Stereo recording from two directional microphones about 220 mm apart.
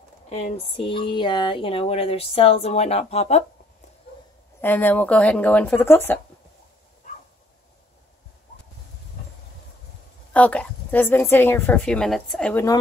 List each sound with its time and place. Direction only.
0.3 s speech: 30° left (ahead or behind)
4.6 s a woman's voice: 10° left (ahead or behind)
10.3 s a woman's voice: 5° left (ahead or behind)